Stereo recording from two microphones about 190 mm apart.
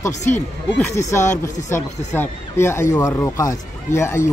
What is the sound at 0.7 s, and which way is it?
Speech, 15° left (ahead or behind).